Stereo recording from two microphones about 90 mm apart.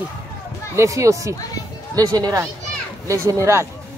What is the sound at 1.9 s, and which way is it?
Speech, 45° right (ahead or behind).